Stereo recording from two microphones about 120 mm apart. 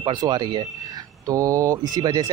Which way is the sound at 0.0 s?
35° right (ahead or behind).